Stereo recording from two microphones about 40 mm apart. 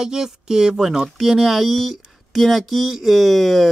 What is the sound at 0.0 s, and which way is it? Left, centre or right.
Speech, centre.